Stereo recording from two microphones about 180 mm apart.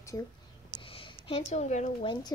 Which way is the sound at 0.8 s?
30° left (ahead or behind).